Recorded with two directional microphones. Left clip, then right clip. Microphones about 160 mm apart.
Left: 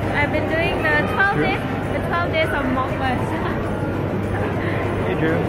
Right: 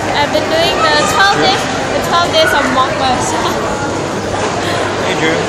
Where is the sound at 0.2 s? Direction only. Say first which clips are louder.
Right 8 dB; 25° right (ahead or behind).